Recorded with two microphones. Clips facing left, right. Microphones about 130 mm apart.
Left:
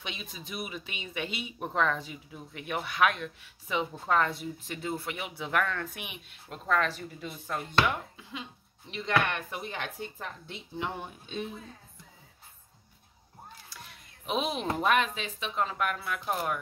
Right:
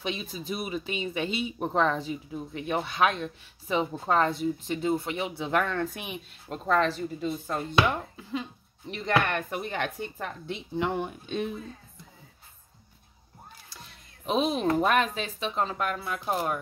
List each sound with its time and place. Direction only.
0.0 s speech: 35° right (ahead or behind); by 11.5 s 65° right (ahead or behind)
14.2 s speech: 35° right (ahead or behind)